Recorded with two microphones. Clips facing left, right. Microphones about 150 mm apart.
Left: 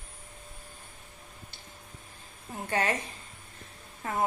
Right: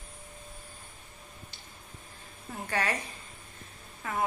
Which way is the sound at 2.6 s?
20° left (ahead or behind).